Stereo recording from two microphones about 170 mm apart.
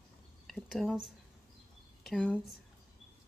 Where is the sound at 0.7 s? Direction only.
Centre (ahead or behind).